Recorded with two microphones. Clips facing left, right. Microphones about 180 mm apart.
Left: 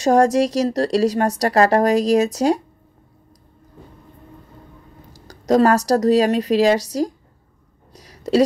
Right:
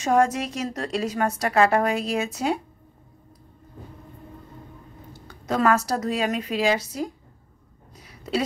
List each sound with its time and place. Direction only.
0.0 s a woman's voice: 35° left (ahead or behind)
5.3 s a woman's voice: 35° left (ahead or behind)
7.9 s a sound: 40° left (ahead or behind)